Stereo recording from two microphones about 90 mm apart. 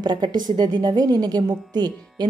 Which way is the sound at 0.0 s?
55° right (ahead or behind).